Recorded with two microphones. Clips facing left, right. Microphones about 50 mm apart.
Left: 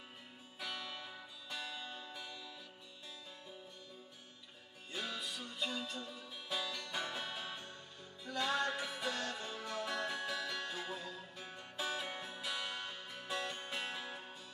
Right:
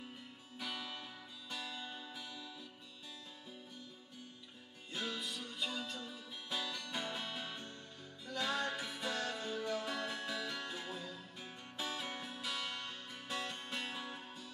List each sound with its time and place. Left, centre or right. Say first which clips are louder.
0.6 s music: even; centre
4.9 s music: right 1 dB; centre